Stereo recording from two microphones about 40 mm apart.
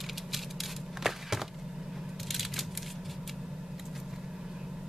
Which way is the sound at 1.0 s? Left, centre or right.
Centre.